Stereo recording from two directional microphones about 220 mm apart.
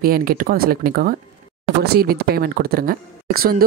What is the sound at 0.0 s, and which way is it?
A woman's voice, 40° right (ahead or behind).